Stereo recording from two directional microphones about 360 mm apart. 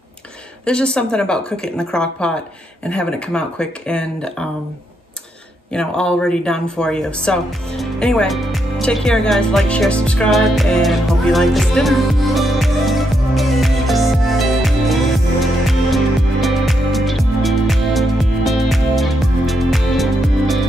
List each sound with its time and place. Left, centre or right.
0.7 s speech: centre
5.7 s speech: centre
15.4 s music: centre